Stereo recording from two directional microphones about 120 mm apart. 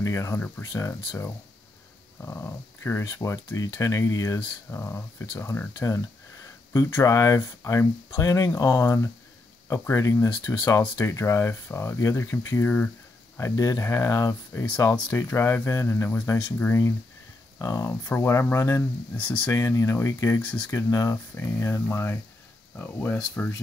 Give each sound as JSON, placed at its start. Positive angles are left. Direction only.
{"t": 0.0, "sound": "speech", "side_deg": 25}
{"t": 13.4, "sound": "speech", "side_deg": 25}